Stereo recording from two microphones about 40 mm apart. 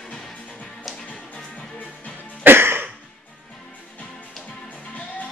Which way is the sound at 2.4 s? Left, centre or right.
Right.